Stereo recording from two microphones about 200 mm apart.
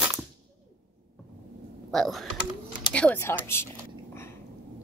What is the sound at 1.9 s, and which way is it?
Speech, centre (ahead or behind).